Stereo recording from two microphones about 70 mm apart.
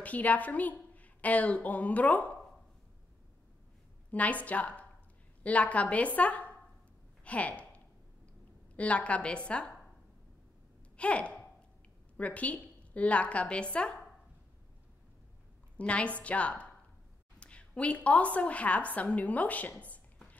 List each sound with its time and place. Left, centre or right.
0.0 s a woman's voice: left
4.1 s a woman's voice: left
11.0 s a woman's voice: centre
15.8 s a woman's voice: centre
19.8 s a sound: left